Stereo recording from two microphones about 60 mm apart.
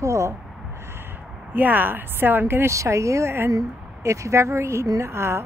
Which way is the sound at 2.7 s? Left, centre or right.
Right.